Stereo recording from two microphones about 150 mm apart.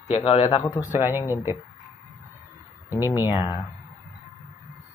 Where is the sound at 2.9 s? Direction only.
25° left (ahead or behind).